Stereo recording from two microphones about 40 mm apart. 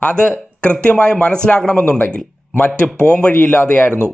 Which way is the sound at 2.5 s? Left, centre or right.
Left.